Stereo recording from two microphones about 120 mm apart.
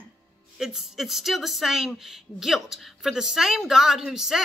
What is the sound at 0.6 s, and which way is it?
Speech, 5° right (ahead or behind).